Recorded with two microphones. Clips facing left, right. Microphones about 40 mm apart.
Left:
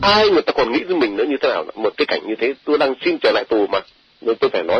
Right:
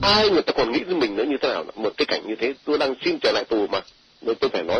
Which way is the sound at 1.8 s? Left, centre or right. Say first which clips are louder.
Left 4 dB; left.